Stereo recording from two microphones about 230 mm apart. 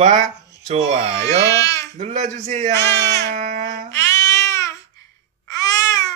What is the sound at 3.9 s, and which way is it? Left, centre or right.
Babbling, centre.